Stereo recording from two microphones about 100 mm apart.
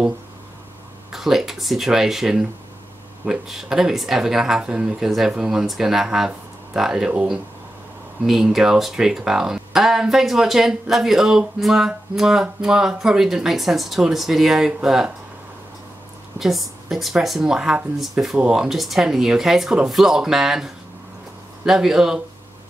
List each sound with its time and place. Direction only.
1.1 s speech: 5° right (ahead or behind)
16.3 s speech: centre (ahead or behind)